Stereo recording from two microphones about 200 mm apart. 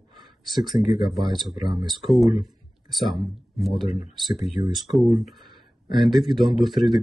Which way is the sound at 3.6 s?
Centre (ahead or behind).